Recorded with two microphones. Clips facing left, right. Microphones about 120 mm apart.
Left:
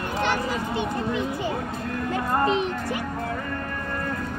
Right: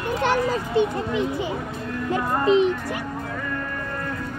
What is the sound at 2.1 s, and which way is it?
Music, 25° right (ahead or behind).